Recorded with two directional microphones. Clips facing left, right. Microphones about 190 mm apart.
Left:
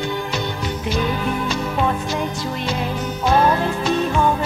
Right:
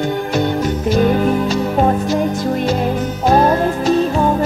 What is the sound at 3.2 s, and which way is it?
Music, 40° right (ahead or behind).